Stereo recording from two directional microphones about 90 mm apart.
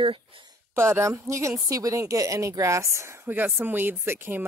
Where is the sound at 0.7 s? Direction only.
30° right (ahead or behind).